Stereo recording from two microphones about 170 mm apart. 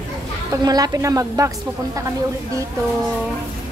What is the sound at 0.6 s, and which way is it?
Speech, 20° right (ahead or behind).